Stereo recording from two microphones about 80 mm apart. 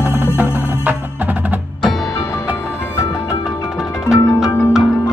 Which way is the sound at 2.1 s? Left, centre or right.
Left.